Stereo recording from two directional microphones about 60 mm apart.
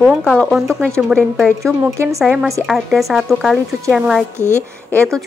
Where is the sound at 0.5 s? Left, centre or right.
Centre.